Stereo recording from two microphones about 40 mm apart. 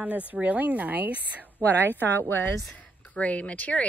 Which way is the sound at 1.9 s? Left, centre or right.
Left.